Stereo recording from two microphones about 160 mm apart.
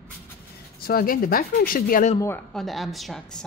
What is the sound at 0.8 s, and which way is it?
Speech, 65° left (ahead or behind).